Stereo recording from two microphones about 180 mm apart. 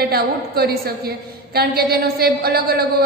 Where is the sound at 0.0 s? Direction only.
60° right (ahead or behind).